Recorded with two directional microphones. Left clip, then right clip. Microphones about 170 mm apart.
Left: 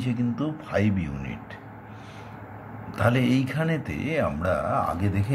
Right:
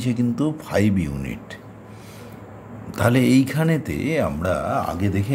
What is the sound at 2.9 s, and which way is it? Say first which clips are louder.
Speech: right 5 dB; 50° right (ahead or behind).